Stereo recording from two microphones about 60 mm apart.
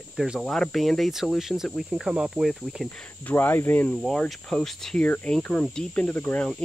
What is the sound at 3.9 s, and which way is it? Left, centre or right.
Speech, centre.